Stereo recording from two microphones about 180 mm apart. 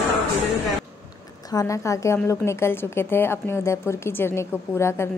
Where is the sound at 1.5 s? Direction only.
20° left (ahead or behind).